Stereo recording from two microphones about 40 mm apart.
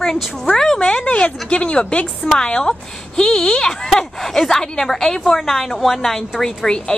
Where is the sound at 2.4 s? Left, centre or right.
Centre.